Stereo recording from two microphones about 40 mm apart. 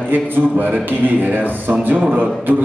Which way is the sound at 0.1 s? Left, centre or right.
Right.